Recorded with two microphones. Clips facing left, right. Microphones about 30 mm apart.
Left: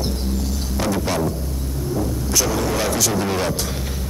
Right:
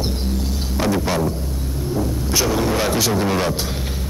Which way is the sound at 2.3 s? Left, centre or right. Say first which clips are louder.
Right 2 dB; right.